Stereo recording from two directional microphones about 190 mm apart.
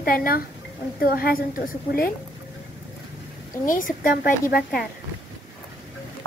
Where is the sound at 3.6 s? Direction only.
45° left (ahead or behind).